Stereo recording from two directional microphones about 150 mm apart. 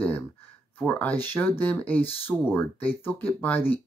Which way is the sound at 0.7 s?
10° left (ahead or behind).